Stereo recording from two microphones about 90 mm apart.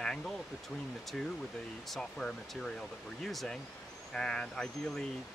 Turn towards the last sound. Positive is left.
turn(degrees=5)  # may be behind; listen again after turning